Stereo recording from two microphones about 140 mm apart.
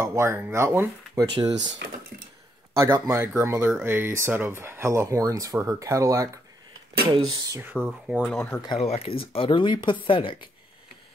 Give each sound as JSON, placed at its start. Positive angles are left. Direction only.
{"t": 0.0, "sound": "speech", "side_deg": -20}
{"t": 1.4, "sound": "speech", "side_deg": -30}
{"t": 2.7, "sound": "speech", "side_deg": -20}
{"t": 7.6, "sound": "speech", "side_deg": -10}
{"t": 8.7, "sound": "speech", "side_deg": 45}